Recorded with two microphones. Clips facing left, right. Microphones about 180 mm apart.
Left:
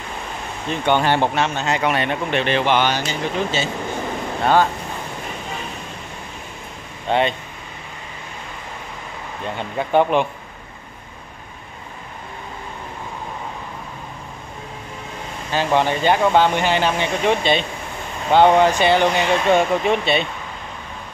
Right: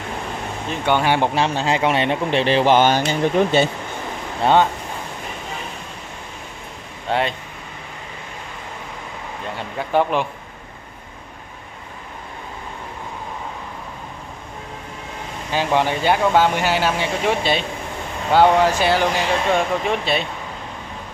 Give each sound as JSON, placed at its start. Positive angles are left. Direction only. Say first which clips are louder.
{"t": 0.8, "sound": "speech", "louder": "even", "side_deg": -10}
{"t": 1.3, "sound": "speech", "louder": "right 1 dB", "side_deg": -30}
{"t": 3.0, "sound": "speech", "louder": "right 5 dB", "side_deg": -55}
{"t": 7.1, "sound": "speech", "louder": "left 2 dB", "side_deg": -5}
{"t": 9.8, "sound": "speech", "louder": "left 2 dB", "side_deg": 0}
{"t": 15.5, "sound": "speech", "louder": "left 1 dB", "side_deg": -10}